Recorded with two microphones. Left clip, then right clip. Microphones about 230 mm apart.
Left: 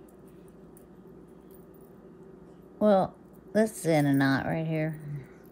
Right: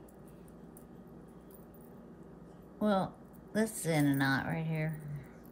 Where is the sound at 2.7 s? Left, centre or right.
Left.